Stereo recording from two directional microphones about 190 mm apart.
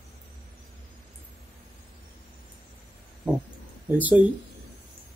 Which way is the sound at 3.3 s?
5° right (ahead or behind).